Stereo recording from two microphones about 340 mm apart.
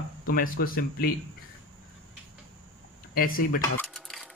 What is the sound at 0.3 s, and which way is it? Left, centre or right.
Speech, left.